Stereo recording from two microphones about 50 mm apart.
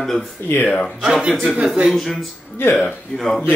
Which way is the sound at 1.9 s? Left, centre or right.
Centre.